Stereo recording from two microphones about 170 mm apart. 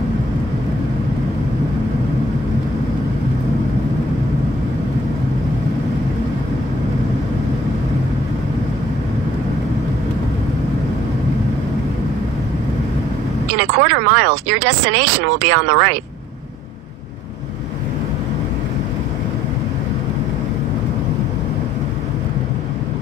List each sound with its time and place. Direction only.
13.6 s speech: 90° right